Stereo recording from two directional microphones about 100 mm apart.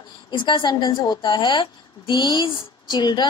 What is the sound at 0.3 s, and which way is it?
A woman's voice, 50° left (ahead or behind).